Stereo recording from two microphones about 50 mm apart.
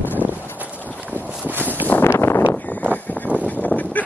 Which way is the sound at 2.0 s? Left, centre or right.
Left.